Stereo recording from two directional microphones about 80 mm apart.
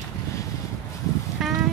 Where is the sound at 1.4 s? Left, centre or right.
Centre.